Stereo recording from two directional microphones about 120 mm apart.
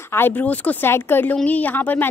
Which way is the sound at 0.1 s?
15° left (ahead or behind).